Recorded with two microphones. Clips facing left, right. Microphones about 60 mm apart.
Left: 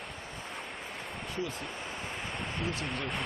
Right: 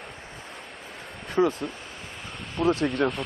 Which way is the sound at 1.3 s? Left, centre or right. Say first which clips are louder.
Right 15 dB; right.